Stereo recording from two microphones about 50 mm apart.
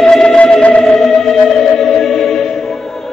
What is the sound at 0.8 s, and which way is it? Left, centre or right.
Music, centre.